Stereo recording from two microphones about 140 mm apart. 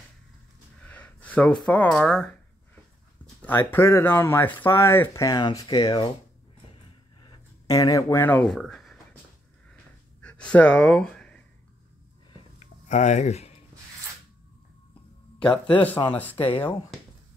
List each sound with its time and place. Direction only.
0.8 s speech: 10° left (ahead or behind)
3.4 s speech: 15° left (ahead or behind); by 6.1 s 35° left (ahead or behind)
7.2 s speech: 25° left (ahead or behind)
8.5 s speech: 5° left (ahead or behind)
10.2 s a sound: 10° left (ahead or behind)
12.8 s speech: 60° left (ahead or behind)
15.3 s speech: 5° left (ahead or behind)